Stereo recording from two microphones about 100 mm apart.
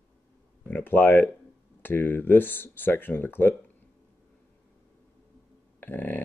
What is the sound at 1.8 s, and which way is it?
Speech, 20° left (ahead or behind).